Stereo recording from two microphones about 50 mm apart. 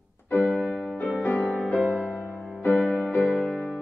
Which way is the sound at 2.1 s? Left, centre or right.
Left.